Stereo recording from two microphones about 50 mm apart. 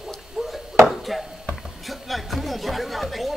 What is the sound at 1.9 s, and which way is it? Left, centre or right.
Chatter, centre.